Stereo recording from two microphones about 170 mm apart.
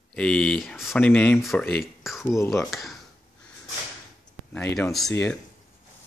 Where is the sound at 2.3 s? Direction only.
15° left (ahead or behind).